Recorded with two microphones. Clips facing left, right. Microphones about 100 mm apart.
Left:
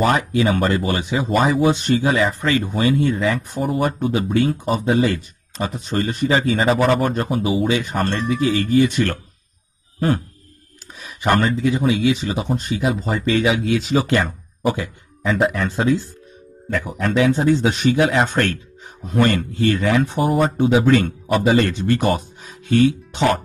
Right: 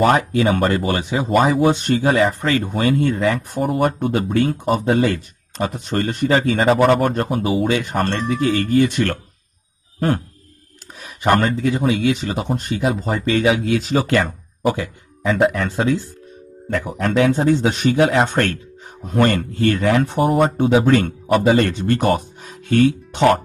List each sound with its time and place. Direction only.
0.0 s speech: 45° right (ahead or behind)
9.9 s a sound: 55° right (ahead or behind)
11.0 s speech: 45° right (ahead or behind)
14.7 s speech: 30° right (ahead or behind)
17.0 s speech: 50° right (ahead or behind)